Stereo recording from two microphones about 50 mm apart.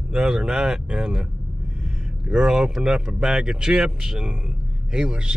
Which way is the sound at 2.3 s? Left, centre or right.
Centre.